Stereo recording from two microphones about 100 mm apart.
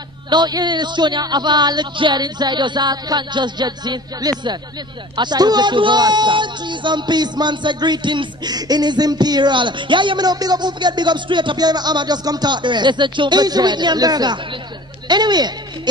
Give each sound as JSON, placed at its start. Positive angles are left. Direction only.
{"t": 0.3, "sound": "speech", "side_deg": -45}